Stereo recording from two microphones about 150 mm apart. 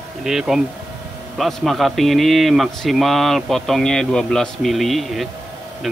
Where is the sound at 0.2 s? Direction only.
5° right (ahead or behind).